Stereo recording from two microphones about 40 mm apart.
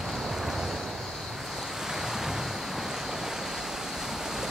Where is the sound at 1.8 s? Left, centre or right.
Centre.